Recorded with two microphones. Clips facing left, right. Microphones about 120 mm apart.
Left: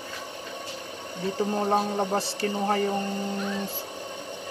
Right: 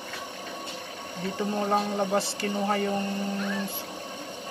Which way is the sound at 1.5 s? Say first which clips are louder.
Even; 30° left (ahead or behind).